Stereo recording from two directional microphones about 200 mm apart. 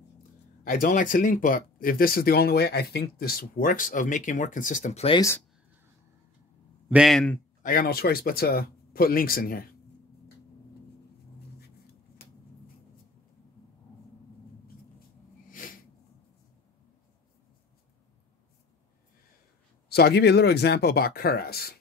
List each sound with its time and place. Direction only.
0.7 s speech: 45° left (ahead or behind)
6.9 s a man's voice: centre (ahead or behind)
7.6 s speech: 45° left (ahead or behind)
15.5 s a sound: 45° left (ahead or behind)
19.9 s speech: 55° left (ahead or behind)